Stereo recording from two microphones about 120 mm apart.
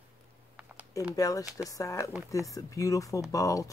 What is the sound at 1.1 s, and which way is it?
Speech, 30° left (ahead or behind).